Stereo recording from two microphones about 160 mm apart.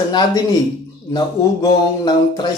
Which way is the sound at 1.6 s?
25° left (ahead or behind).